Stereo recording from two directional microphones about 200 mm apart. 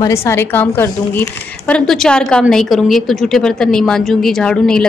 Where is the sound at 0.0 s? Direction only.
15° left (ahead or behind).